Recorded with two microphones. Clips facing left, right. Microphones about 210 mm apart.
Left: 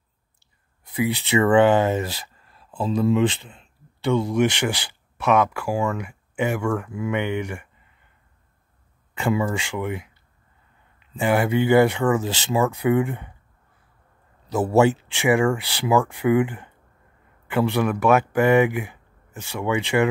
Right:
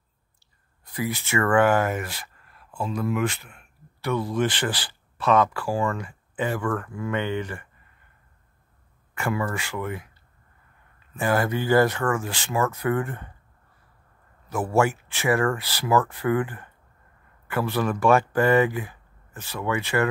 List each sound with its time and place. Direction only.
0.9 s speech: 20° left (ahead or behind)
4.1 s speech: 15° left (ahead or behind)
9.1 s speech: 20° left (ahead or behind)
11.1 s speech: 15° left (ahead or behind)
14.8 s speech: 20° left (ahead or behind)